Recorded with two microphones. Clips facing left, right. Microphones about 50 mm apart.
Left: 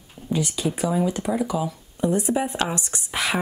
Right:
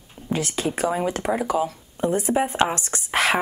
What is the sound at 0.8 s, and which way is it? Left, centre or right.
Speech, right.